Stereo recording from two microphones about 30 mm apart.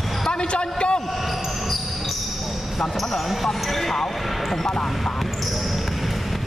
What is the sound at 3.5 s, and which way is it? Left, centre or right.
Speech, centre.